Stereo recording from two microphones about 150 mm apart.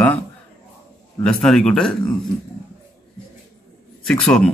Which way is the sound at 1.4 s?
5° left (ahead or behind).